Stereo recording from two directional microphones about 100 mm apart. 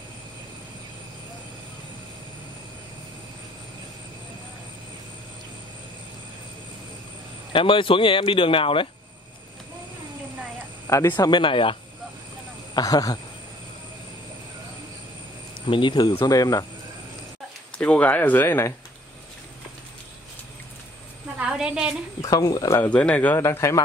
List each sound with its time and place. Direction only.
7.5 s speech: 60° left (ahead or behind)
10.9 s speech: 30° left (ahead or behind)
11.1 s speech: 50° left (ahead or behind)
12.7 s speech: 40° left (ahead or behind)
15.6 s speech: 55° left (ahead or behind)
16.3 s speech: 35° left (ahead or behind)
17.7 s speech: 15° left (ahead or behind)
21.4 s a woman's voice: 10° right (ahead or behind)
22.2 s speech: 35° left (ahead or behind)
22.8 s speech: 10° left (ahead or behind); by 23.8 s 30° left (ahead or behind)